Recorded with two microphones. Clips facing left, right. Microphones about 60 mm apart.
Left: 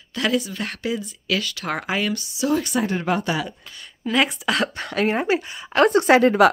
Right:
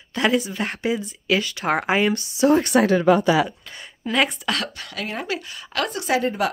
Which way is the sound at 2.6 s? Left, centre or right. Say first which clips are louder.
Right 7 dB; right.